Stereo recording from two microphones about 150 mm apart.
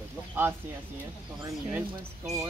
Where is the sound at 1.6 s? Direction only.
5° right (ahead or behind).